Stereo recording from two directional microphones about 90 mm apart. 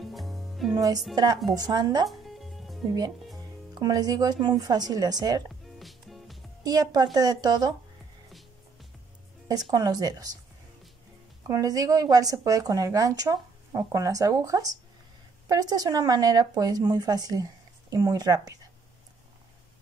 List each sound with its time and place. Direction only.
0.0 s music: centre (ahead or behind)
1.1 s speech: 45° right (ahead or behind)
2.0 s music: centre (ahead or behind)
3.7 s speech: 45° right (ahead or behind)
5.8 s music: centre (ahead or behind)
6.6 s speech: 45° right (ahead or behind)
8.3 s music: centre (ahead or behind)
9.7 s speech: 45° right (ahead or behind)
11.4 s speech: 40° right (ahead or behind)